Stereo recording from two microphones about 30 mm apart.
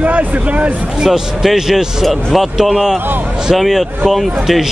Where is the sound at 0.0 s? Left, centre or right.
Right.